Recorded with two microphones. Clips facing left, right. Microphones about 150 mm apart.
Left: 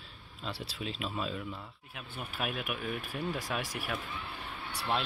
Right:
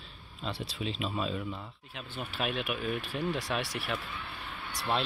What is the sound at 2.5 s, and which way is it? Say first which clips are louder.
Speech: right 3 dB; 90° right.